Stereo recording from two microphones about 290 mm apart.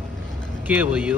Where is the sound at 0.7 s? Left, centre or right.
Centre.